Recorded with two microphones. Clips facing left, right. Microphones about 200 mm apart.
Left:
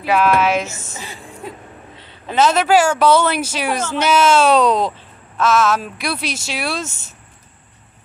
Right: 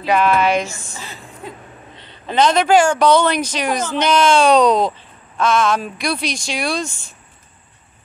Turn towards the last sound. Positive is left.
turn(degrees=5)  # may be behind; listen again after turning